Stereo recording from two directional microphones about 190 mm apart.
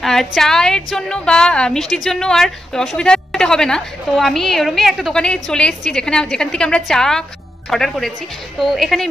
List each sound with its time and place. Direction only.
0.0 s a woman's voice: centre (ahead or behind)